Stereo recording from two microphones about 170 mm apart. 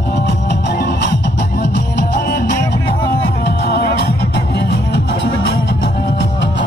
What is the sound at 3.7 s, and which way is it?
Music, 75° left (ahead or behind).